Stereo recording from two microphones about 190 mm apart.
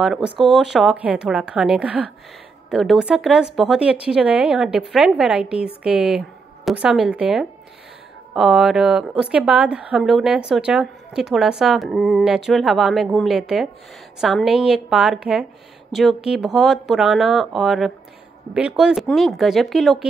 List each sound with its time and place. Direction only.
0.0 s speech: centre (ahead or behind)